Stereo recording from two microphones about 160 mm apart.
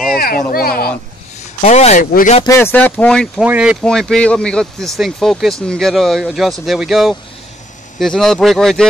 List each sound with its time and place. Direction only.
0.1 s a sound: 65° left (ahead or behind)
0.5 s speech: 70° left (ahead or behind)
1.6 s speech: 45° left (ahead or behind)
2.4 s speech: 15° left (ahead or behind)
3.4 s speech: 5° right (ahead or behind)